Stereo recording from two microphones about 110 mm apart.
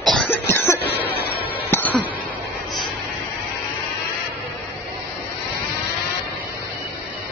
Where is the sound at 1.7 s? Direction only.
15° left (ahead or behind).